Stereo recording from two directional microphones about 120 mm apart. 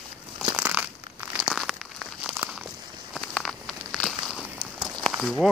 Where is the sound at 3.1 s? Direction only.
Centre (ahead or behind).